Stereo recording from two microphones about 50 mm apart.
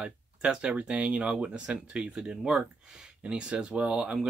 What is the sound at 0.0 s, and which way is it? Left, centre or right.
Speech, centre.